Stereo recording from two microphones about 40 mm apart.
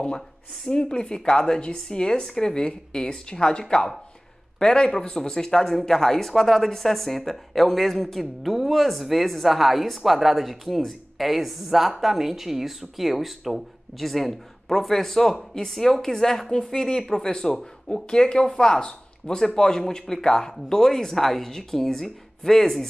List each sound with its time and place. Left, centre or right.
0.7 s speech: left